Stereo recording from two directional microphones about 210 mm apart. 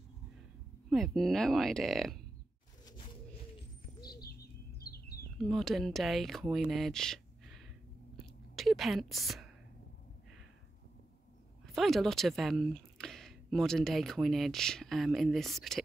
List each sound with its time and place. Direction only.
0.8 s speech: centre (ahead or behind)
4.0 s bird: 45° left (ahead or behind)
4.9 s chirp: 45° left (ahead or behind)
5.4 s speech: centre (ahead or behind)
8.2 s whispering: centre (ahead or behind)
11.6 s speech: centre (ahead or behind)